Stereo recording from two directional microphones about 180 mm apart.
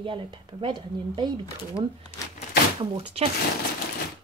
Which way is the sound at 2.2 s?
20° left (ahead or behind).